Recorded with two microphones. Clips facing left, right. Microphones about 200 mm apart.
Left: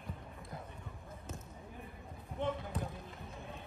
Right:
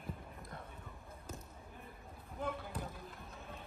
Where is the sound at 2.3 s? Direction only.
5° right (ahead or behind).